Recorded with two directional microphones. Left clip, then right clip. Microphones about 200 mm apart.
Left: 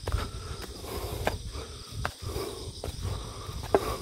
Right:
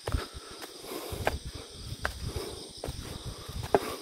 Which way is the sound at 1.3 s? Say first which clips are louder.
Even; centre (ahead or behind).